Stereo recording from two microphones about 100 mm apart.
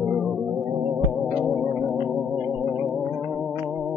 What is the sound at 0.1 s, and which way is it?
Music, centre (ahead or behind).